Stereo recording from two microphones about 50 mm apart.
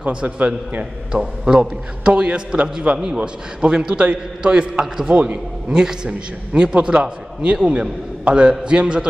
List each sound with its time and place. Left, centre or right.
0.0 s a man's voice: right